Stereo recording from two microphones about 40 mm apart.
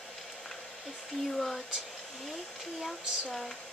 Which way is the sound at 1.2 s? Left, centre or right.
Centre.